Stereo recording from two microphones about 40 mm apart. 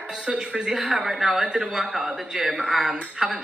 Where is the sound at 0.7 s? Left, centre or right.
Centre.